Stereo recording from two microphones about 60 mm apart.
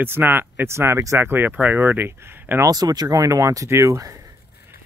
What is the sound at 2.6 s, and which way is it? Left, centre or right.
Speech, right.